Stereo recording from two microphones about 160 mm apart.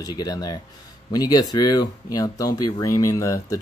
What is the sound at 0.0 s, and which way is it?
Speech, 25° left (ahead or behind).